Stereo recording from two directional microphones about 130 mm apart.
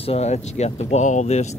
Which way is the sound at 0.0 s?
55° left (ahead or behind).